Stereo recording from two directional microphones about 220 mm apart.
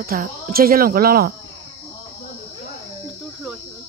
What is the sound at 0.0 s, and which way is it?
Speech, 40° right (ahead or behind).